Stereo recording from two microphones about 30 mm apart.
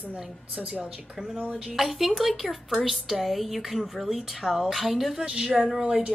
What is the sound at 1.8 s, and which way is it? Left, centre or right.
A woman's voice, centre.